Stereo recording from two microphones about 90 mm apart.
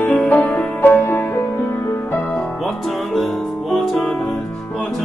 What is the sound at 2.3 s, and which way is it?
Music, 5° left (ahead or behind).